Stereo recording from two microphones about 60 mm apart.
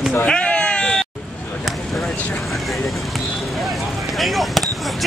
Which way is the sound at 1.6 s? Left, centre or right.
Centre.